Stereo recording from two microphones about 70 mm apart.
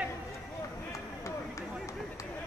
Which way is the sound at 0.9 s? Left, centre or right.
Left.